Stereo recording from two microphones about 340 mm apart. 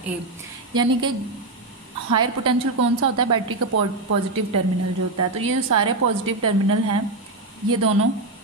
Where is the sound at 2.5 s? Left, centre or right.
Right.